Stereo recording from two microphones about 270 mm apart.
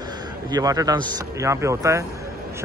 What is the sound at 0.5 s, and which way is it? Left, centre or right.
Speech, centre.